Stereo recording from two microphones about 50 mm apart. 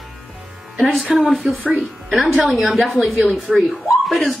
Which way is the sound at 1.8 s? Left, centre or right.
Centre.